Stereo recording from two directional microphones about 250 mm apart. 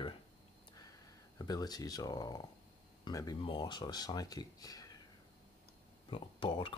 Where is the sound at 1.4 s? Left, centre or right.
Centre.